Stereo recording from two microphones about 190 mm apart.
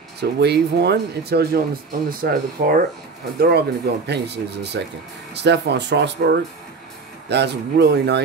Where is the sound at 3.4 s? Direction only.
60° right (ahead or behind).